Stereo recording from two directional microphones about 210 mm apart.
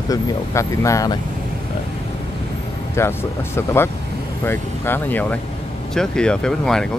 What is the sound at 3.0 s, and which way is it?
Speech, 10° left (ahead or behind).